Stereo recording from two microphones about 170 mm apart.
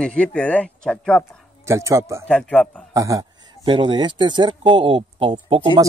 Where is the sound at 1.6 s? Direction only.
15° right (ahead or behind).